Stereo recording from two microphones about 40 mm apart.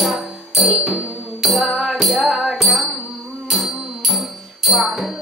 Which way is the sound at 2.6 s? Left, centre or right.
Centre.